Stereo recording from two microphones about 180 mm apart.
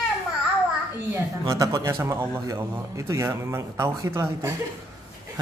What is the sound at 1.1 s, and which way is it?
A man's voice, 15° right (ahead or behind).